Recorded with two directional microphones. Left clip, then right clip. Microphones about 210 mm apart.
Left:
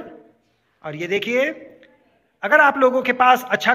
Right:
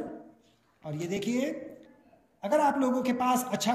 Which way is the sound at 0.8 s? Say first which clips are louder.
Left 11 dB; 30° left (ahead or behind).